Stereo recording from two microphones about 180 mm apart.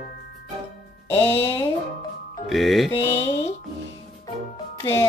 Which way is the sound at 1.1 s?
15° left (ahead or behind).